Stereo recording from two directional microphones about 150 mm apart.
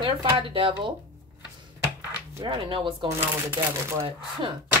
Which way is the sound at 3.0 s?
15° right (ahead or behind).